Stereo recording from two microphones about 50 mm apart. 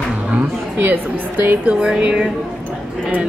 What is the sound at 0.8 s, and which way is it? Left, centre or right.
A woman's voice, right.